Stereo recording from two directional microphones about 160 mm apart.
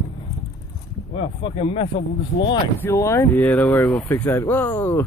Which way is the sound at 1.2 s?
35° left (ahead or behind).